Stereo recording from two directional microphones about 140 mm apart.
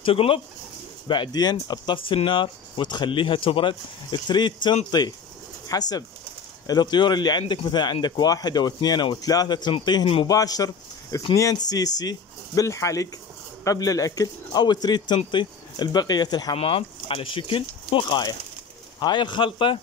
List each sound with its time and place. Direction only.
0.0 s speech: 40° left (ahead or behind)
10.2 s speech: 25° left (ahead or behind)
16.5 s speech: 40° left (ahead or behind)